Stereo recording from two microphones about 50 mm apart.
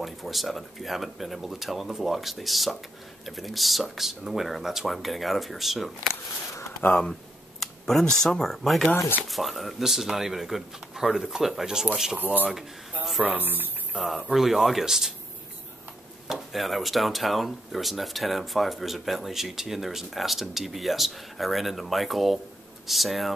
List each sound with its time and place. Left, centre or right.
0.0 s speech: centre
6.9 s speech: centre
12.2 s speech: right
13.9 s speech: centre
16.3 s speech: centre